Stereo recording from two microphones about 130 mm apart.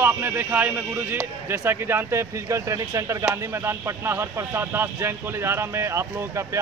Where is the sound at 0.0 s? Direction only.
15° right (ahead or behind).